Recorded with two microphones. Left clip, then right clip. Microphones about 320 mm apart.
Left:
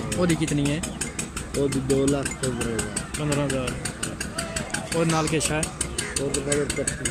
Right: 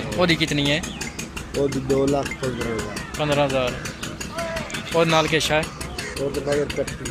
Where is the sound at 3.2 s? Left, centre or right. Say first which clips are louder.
Right 6 dB; centre.